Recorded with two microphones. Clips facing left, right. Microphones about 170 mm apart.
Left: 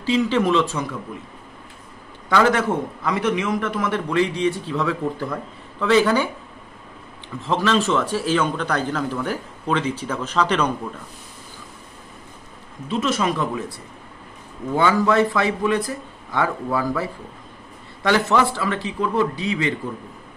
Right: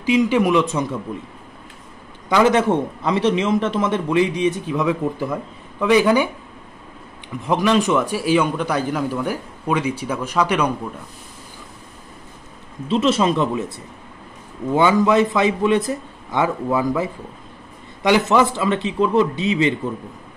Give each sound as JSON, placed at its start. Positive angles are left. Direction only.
{"t": 0.0, "sound": "a man's voice", "side_deg": -15}
{"t": 2.2, "sound": "a man's voice", "side_deg": -15}
{"t": 7.3, "sound": "a man's voice", "side_deg": -15}
{"t": 12.8, "sound": "a man's voice", "side_deg": -25}